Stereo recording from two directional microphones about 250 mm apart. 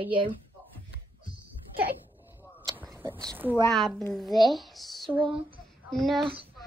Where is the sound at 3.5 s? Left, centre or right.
Centre.